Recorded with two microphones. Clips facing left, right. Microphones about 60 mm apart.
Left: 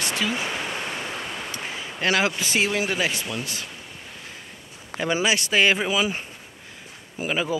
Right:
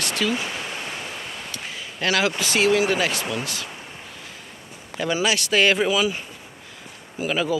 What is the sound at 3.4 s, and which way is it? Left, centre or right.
Speech, left.